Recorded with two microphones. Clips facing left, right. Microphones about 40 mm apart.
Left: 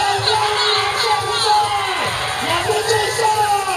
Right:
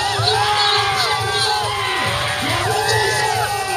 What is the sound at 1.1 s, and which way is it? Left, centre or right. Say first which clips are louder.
Crowd: left 3 dB; left.